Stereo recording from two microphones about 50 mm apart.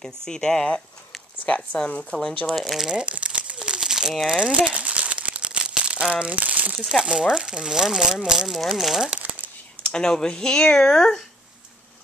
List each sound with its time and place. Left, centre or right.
0.0 s speech: centre
1.4 s speech: left
2.1 s speech: centre
3.0 s crumpling: right
4.3 s speech: centre
4.7 s crumpling: right
6.8 s speech: centre
7.1 s speech: centre
9.1 s crumpling: right
9.8 s speech: centre